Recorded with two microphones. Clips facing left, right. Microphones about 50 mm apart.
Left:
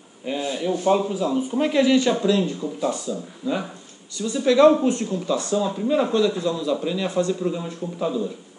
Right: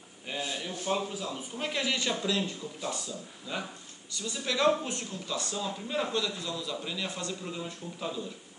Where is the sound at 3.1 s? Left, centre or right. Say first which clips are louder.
Left 12 dB; centre.